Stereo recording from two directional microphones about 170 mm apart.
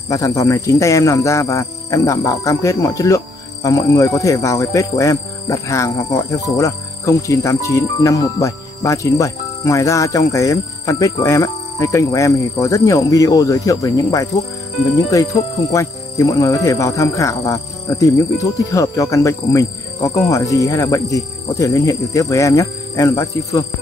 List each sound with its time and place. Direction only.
0.1 s speech: 20° left (ahead or behind)